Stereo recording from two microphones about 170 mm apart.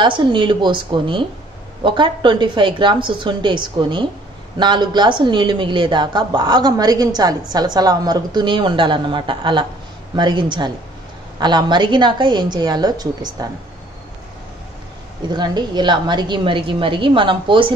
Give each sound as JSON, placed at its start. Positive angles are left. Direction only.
{"t": 0.0, "sound": "a woman's voice", "side_deg": -30}
{"t": 15.2, "sound": "a woman's voice", "side_deg": -25}